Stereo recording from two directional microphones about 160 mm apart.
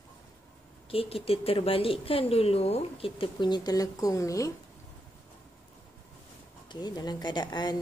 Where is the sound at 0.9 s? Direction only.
35° left (ahead or behind); by 4.5 s 20° left (ahead or behind).